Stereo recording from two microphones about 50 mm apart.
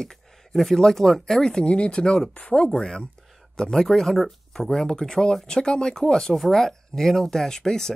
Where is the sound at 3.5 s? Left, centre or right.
Centre.